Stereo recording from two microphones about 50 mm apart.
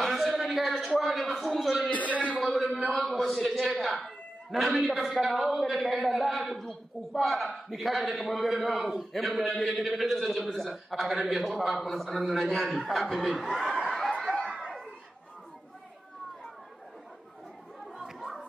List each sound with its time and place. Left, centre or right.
0.0 s a sound: centre
1.9 s a man's voice: left
2.4 s a man's voice: centre
3.7 s a sound: centre
4.7 s a man's voice: centre
14.2 s chatter: centre